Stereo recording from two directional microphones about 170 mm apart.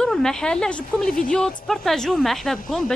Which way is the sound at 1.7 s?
Centre (ahead or behind).